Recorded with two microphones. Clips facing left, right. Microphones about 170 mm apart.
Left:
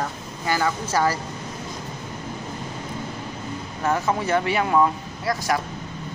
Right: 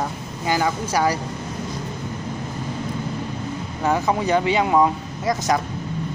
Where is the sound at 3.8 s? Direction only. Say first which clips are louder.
Right 2 dB; 15° right (ahead or behind).